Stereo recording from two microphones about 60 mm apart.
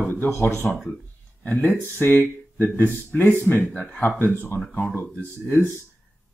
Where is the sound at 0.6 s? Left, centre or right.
Left.